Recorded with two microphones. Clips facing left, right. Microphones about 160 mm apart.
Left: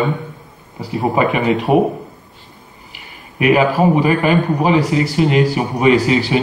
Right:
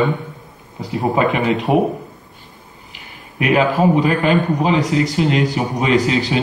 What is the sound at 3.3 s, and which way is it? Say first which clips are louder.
Speech: left 2 dB; 10° left (ahead or behind).